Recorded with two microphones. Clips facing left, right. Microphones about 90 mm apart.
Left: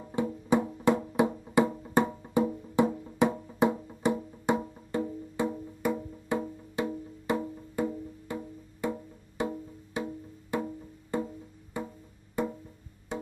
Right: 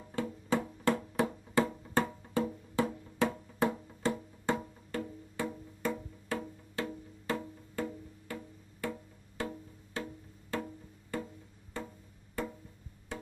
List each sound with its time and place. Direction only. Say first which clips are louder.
0.0 s music: left 6 dB; 20° left (ahead or behind)
5.8 s wood block: left 4 dB; 15° left (ahead or behind)
12.4 s music: left 7 dB; 20° left (ahead or behind)